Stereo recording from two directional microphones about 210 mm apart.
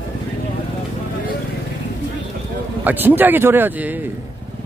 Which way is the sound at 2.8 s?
10° right (ahead or behind).